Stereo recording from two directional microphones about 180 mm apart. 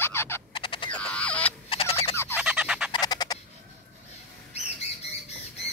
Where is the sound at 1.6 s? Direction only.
30° left (ahead or behind).